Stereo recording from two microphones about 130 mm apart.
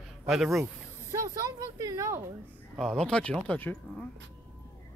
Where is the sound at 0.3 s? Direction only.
Centre (ahead or behind).